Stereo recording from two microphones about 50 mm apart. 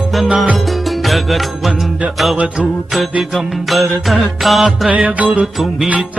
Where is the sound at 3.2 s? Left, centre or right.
Centre.